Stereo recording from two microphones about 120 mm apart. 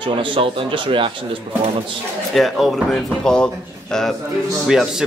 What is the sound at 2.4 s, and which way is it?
A man's voice, centre (ahead or behind).